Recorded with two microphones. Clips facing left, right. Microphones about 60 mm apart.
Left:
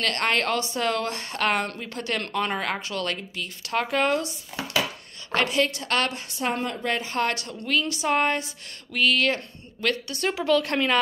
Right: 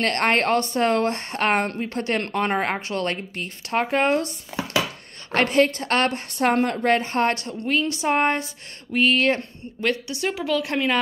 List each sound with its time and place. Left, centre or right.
0.0 s a woman's voice: right
5.3 s a woman's voice: right
6.3 s a woman's voice: right
10.3 s speech: centre
10.6 s speech: centre